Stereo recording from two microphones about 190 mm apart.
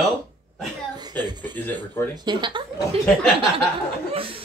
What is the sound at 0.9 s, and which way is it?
Music, 20° right (ahead or behind).